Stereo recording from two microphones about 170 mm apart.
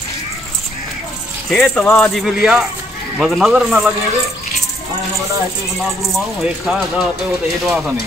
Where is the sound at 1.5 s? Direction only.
Centre (ahead or behind).